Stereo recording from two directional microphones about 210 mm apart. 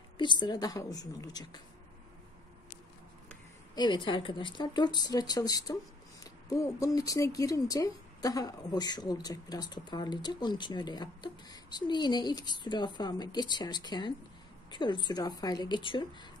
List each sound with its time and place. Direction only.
0.2 s speech: 20° left (ahead or behind)
3.7 s speech: 20° left (ahead or behind)